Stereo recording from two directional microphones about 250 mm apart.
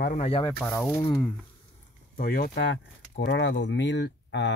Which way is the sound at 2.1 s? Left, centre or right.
Left.